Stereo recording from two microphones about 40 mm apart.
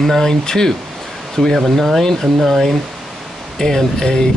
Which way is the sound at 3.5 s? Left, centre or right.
Centre.